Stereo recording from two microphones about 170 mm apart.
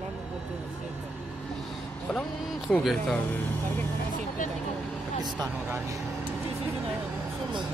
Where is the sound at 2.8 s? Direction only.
Centre (ahead or behind).